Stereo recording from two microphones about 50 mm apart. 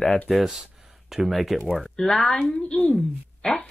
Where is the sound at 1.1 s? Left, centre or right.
Centre.